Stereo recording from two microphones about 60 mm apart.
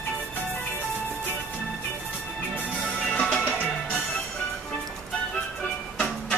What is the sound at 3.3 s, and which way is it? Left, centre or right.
Music, left.